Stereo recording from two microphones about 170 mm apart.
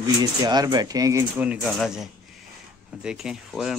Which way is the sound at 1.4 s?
10° right (ahead or behind).